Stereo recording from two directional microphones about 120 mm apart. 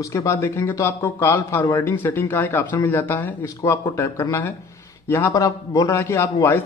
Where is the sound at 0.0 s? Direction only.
25° left (ahead or behind).